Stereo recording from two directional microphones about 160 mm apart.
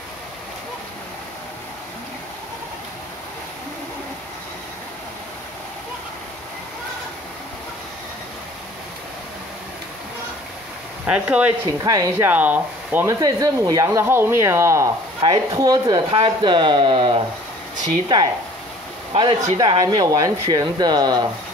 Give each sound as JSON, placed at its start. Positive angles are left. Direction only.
{"t": 11.1, "sound": "speech", "side_deg": -10}
{"t": 11.6, "sound": "speech", "side_deg": -25}
{"t": 13.2, "sound": "speech", "side_deg": -25}
{"t": 19.5, "sound": "speech", "side_deg": -30}